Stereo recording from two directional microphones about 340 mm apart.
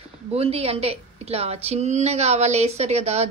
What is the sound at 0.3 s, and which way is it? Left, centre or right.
A woman's voice, centre.